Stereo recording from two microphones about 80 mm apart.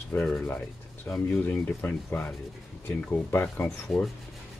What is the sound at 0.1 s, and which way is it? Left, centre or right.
Speech, left.